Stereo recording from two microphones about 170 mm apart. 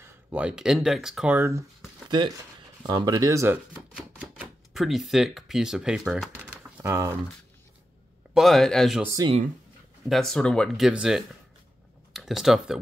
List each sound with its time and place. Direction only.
0.0 s speech: 10° right (ahead or behind)
2.0 s speech: 25° right (ahead or behind)
3.9 s speech: centre (ahead or behind)
6.8 s speech: 15° right (ahead or behind)
8.4 s speech: centre (ahead or behind)
9.0 s speech: 20° right (ahead or behind)
10.0 s speech: centre (ahead or behind)